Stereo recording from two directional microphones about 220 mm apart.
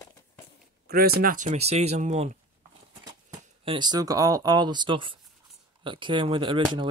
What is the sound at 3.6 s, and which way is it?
Speech, 20° right (ahead or behind).